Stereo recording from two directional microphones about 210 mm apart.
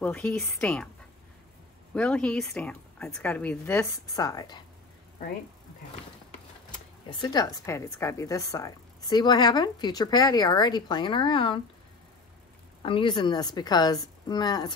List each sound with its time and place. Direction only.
0.0 s a woman's voice: 5° left (ahead or behind)
2.0 s a woman's voice: 5° left (ahead or behind)
7.1 s a woman's voice: 20° left (ahead or behind)
12.8 s a woman's voice: 25° left (ahead or behind)